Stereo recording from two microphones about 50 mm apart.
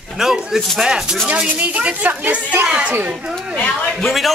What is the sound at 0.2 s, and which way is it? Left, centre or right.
Speech, centre.